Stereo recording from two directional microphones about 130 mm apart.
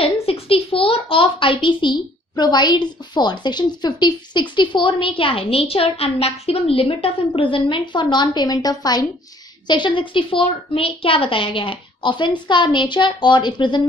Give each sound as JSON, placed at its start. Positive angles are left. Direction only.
{"t": 0.0, "sound": "speech", "side_deg": 45}